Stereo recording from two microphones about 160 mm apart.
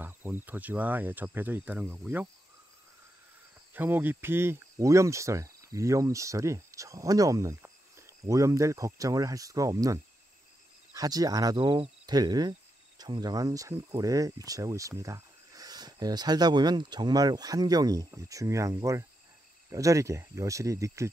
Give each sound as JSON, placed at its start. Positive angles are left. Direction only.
{"t": 0.0, "sound": "speech", "side_deg": -10}
{"t": 3.7, "sound": "speech", "side_deg": -10}